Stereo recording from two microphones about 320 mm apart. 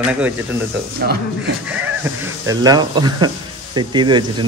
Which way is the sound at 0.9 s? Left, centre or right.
Right.